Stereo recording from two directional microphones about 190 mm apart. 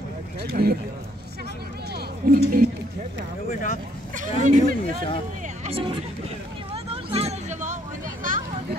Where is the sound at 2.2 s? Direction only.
50° right (ahead or behind).